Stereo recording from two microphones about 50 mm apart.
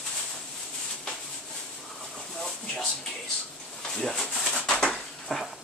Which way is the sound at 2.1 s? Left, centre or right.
Centre.